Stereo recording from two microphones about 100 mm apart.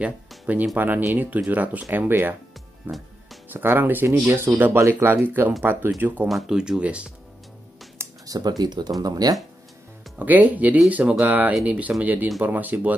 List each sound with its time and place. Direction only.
0.7 s speech: 15° right (ahead or behind)
6.2 s speech: 5° right (ahead or behind)
8.3 s speech: 40° right (ahead or behind)
10.1 s speech: 15° right (ahead or behind)